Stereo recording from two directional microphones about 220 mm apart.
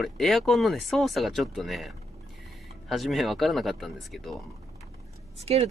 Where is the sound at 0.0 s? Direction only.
Centre (ahead or behind).